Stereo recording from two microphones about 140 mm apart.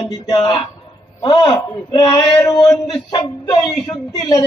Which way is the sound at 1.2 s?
30° left (ahead or behind).